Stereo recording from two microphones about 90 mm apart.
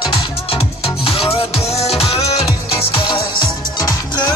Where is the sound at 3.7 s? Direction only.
45° left (ahead or behind).